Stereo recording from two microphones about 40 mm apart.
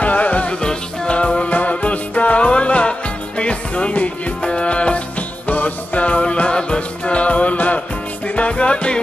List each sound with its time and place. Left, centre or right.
0.0 s music: left
0.5 s music: left